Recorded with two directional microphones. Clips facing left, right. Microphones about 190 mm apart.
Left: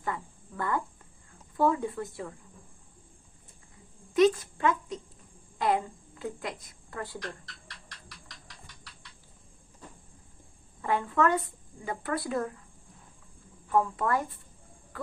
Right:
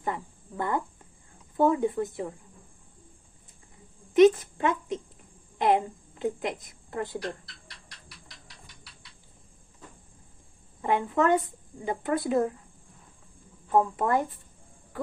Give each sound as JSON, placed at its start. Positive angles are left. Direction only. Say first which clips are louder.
{"t": 0.0, "sound": "cricket", "louder": "right 2 dB", "side_deg": -20}
{"t": 1.6, "sound": "speech", "louder": "right 4 dB", "side_deg": -20}
{"t": 4.1, "sound": "a sound", "louder": "right 5 dB", "side_deg": -20}
{"t": 5.6, "sound": "a woman's voice", "louder": "right 4 dB", "side_deg": -20}
{"t": 7.2, "sound": "speech", "louder": "right 6 dB", "side_deg": -10}
{"t": 10.8, "sound": "a woman's voice", "louder": "right 2 dB", "side_deg": -20}
{"t": 13.7, "sound": "a woman's voice", "louder": "right 3 dB", "side_deg": -20}